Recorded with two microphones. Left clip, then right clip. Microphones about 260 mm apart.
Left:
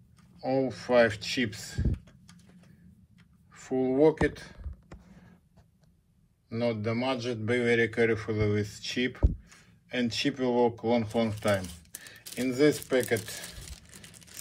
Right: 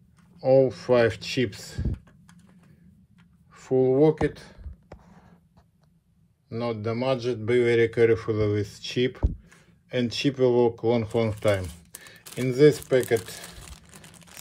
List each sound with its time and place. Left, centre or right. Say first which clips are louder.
0.4 s speech: right 10 dB; right
3.5 s speech: right 6 dB; right
6.5 s speech: right 1 dB; centre